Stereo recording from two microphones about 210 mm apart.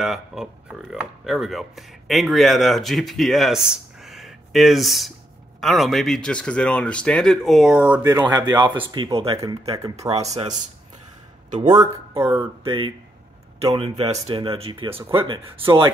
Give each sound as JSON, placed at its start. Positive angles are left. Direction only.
{"t": 0.0, "sound": "speech", "side_deg": 0}
{"t": 9.8, "sound": "speech", "side_deg": -15}
{"t": 11.6, "sound": "speech", "side_deg": -20}
{"t": 13.7, "sound": "speech", "side_deg": -25}